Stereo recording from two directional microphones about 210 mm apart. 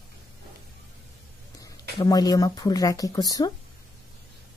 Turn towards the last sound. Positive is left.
turn(degrees=20)  # may be behind; listen again after turning